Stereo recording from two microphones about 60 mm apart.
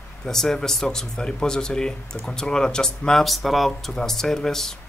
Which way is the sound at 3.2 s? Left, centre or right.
Centre.